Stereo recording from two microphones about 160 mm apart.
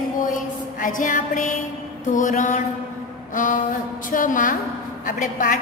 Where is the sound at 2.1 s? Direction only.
50° left (ahead or behind).